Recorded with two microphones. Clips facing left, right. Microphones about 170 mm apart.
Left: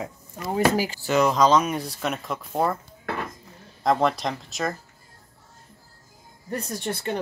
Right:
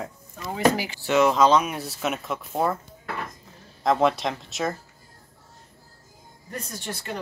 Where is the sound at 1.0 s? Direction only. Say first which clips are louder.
Right 2 dB; centre (ahead or behind).